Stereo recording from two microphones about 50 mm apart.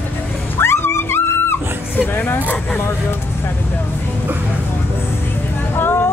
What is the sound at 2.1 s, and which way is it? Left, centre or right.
Speech, left.